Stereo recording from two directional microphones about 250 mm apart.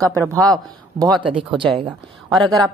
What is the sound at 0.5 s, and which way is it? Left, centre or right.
Speech, centre.